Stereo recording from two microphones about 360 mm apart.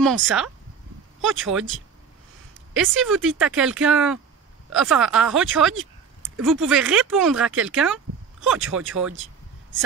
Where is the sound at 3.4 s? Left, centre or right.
Centre.